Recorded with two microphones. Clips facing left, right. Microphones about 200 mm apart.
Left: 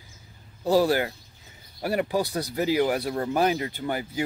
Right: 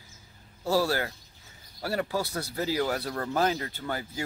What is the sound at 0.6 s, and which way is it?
Speech, 15° left (ahead or behind).